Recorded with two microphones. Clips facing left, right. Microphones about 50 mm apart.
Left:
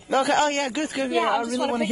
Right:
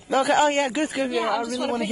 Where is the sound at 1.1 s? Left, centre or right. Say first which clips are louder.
Left 2 dB; centre.